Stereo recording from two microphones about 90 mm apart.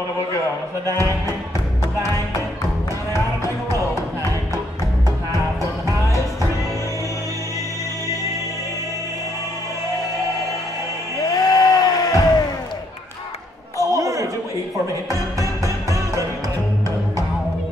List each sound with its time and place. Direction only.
5.3 s music: 40° right (ahead or behind)
11.3 s a sound: 45° left (ahead or behind)
13.7 s chatter: 35° right (ahead or behind)
15.6 s music: 40° right (ahead or behind)